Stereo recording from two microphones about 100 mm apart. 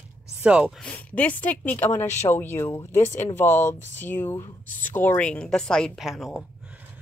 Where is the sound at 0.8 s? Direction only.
15° left (ahead or behind).